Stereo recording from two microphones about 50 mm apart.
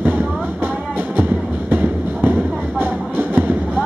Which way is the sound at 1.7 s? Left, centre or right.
Right.